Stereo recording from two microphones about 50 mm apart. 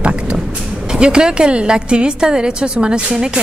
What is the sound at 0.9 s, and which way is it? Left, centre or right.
A woman's voice, centre.